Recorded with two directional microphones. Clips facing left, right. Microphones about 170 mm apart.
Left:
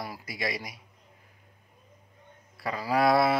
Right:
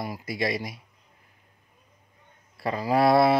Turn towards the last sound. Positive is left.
turn(degrees=-25)  # may be behind; listen again after turning